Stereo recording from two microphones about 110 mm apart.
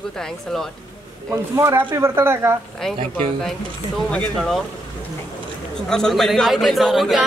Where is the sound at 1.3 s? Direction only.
25° right (ahead or behind).